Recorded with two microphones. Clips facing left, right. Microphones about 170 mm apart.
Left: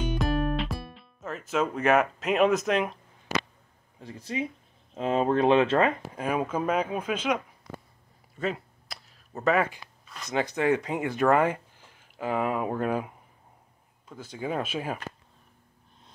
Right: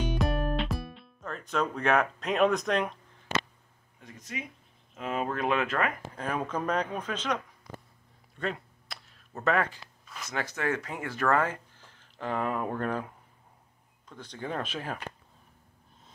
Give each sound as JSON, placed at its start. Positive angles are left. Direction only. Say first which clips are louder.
{"t": 0.0, "sound": "music", "louder": "left 2 dB", "side_deg": 0}
{"t": 4.0, "sound": "speech", "louder": "left 8 dB", "side_deg": 30}
{"t": 6.0, "sound": "speech", "louder": "left 4 dB", "side_deg": 10}
{"t": 8.4, "sound": "a sound", "louder": "left 3 dB", "side_deg": 0}
{"t": 10.3, "sound": "speech", "louder": "left 6 dB", "side_deg": 20}